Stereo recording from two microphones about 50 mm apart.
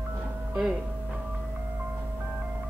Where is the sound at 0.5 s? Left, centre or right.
Centre.